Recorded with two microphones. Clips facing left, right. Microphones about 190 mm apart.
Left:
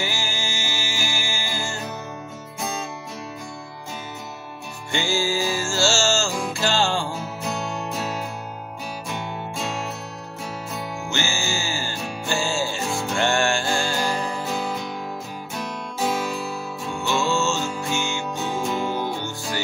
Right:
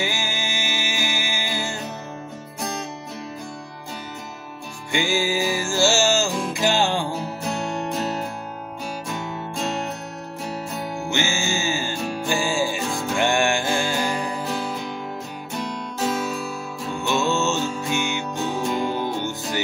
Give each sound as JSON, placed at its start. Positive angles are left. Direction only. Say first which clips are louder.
{"t": 0.0, "sound": "music", "louder": "right 2 dB", "side_deg": -20}
{"t": 4.9, "sound": "music", "louder": "right 1 dB", "side_deg": -15}
{"t": 7.5, "sound": "music", "louder": "right 3 dB", "side_deg": 0}
{"t": 11.1, "sound": "music", "louder": "right 3 dB", "side_deg": -15}
{"t": 17.0, "sound": "music", "louder": "right 1 dB", "side_deg": -20}
{"t": 18.6, "sound": "music", "louder": "right 1 dB", "side_deg": 5}
{"t": 18.9, "sound": "music", "louder": "right 2 dB", "side_deg": -20}